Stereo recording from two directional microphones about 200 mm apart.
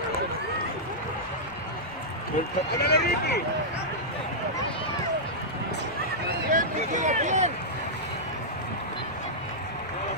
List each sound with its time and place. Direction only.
2.7 s speech: 55° left (ahead or behind)
6.5 s speech: 40° right (ahead or behind)